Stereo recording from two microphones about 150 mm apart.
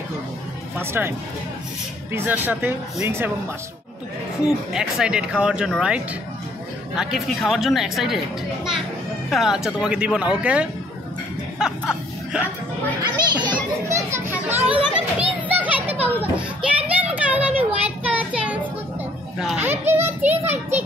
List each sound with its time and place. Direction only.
0.7 s speech: 15° right (ahead or behind)
2.1 s speech: 15° right (ahead or behind)
4.5 s speech: 5° right (ahead or behind)
9.3 s speech: centre (ahead or behind)
11.5 s music: 5° right (ahead or behind)
13.0 s speech: 30° right (ahead or behind)
13.8 s children playing: 20° right (ahead or behind)
14.7 s children playing: 10° right (ahead or behind)
19.3 s a child's voice: 5° right (ahead or behind)
19.6 s speech: 15° right (ahead or behind)